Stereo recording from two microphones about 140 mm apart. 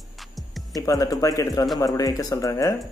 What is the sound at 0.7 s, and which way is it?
Speech, 25° left (ahead or behind).